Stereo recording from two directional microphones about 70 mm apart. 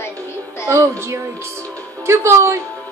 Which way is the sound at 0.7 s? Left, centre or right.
Right.